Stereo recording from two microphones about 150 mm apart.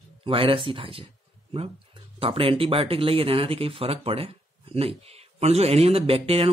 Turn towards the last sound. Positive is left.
turn(degrees=-40)  # may be behind; listen again after turning